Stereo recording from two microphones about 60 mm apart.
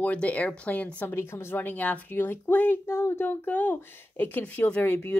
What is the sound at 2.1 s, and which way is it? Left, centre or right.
Speech, left.